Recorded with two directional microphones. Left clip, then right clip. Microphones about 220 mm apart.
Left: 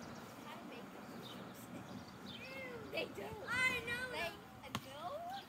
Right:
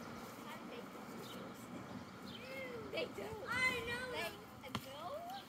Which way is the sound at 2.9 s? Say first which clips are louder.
Even; 20° left (ahead or behind).